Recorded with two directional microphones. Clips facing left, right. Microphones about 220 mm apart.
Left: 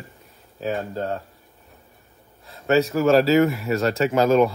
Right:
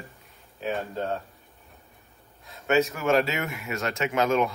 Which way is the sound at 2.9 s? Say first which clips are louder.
Left 8 dB; 35° left (ahead or behind).